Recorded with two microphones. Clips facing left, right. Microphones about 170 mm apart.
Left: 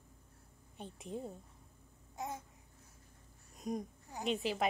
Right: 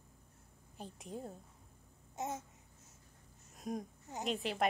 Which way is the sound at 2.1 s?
20° right (ahead or behind).